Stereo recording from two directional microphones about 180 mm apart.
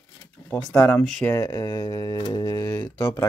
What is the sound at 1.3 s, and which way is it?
Speech, 20° left (ahead or behind).